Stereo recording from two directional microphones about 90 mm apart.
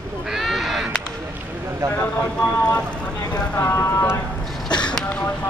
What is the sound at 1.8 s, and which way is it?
Speech, 35° right (ahead or behind).